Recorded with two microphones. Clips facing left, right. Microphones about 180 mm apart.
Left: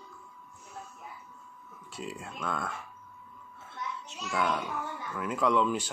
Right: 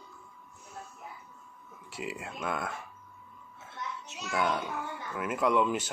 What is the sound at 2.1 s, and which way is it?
Speech, 15° right (ahead or behind).